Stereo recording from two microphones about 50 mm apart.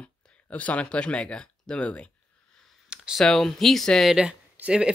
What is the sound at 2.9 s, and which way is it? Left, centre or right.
Clicking, centre.